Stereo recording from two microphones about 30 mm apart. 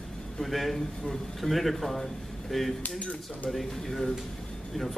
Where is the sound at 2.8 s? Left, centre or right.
Left.